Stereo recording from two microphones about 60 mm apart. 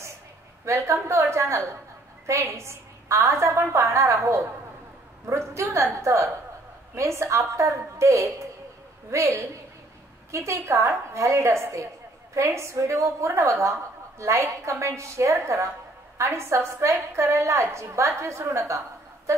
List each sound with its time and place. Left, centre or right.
0.7 s a woman's voice: right
3.9 s a woman's voice: right